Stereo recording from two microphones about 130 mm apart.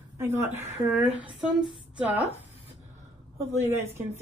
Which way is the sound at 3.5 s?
20° right (ahead or behind).